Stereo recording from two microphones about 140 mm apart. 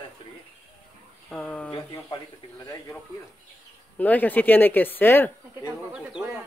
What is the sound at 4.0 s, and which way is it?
Speech, 10° left (ahead or behind).